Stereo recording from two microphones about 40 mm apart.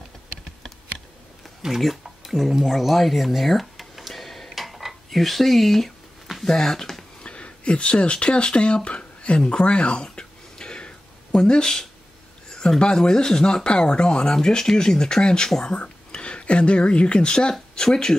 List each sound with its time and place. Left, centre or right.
1.8 s a sound: centre
6.4 s speech: centre
7.2 s speech: left
15.7 s speech: left